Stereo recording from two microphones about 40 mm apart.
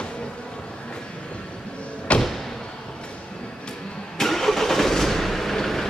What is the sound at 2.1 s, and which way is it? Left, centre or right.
Slam, left.